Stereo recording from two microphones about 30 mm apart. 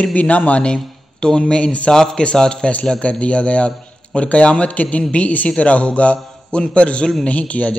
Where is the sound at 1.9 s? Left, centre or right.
Left.